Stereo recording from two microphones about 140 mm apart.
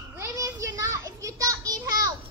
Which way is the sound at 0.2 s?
25° right (ahead or behind).